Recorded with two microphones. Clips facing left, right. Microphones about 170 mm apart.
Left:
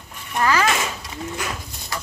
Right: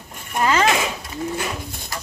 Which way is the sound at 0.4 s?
25° right (ahead or behind).